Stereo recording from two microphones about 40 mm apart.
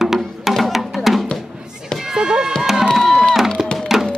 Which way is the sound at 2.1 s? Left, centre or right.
Centre.